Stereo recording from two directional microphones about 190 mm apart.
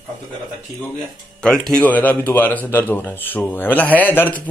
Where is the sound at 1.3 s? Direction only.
5° left (ahead or behind).